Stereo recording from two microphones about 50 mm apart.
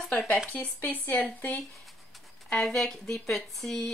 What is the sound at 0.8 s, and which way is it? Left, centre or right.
Speech, left.